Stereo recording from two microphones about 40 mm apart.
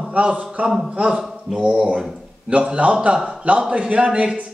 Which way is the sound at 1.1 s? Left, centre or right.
Centre.